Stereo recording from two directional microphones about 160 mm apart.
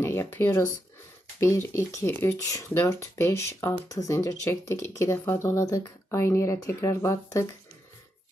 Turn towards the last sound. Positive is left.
turn(degrees=20)  # may be behind; listen again after turning